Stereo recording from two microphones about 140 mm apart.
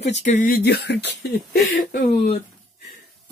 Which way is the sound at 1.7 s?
90° left.